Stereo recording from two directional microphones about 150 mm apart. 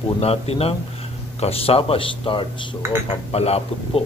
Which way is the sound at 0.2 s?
40° left (ahead or behind).